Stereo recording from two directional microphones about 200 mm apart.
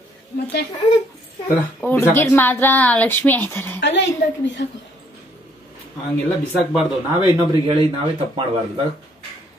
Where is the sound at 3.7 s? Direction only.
60° left (ahead or behind).